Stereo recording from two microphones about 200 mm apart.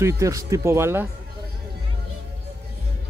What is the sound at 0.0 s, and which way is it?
Speech, 15° right (ahead or behind).